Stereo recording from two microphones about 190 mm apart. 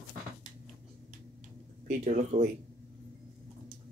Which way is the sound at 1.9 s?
40° right (ahead or behind).